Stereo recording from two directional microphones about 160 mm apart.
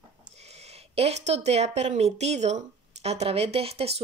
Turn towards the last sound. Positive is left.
turn(degrees=-40)  # may be behind; listen again after turning